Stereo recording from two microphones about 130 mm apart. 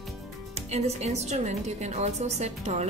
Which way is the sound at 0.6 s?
55° right (ahead or behind).